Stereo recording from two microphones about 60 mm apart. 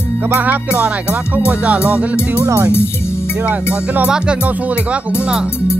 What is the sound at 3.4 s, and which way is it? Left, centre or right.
Music, right.